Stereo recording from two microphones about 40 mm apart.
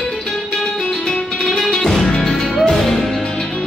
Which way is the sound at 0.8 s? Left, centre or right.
Left.